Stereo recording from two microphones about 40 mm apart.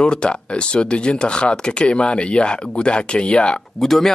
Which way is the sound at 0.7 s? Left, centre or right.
Left.